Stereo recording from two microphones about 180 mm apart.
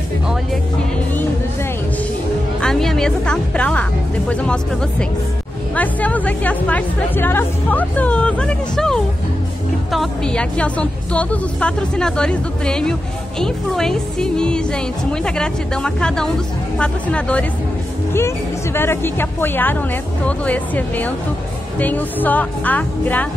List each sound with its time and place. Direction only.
2.6 s music: 5° left (ahead or behind)
4.3 s a woman's voice: 5° left (ahead or behind)
5.8 s a woman's voice: 10° left (ahead or behind)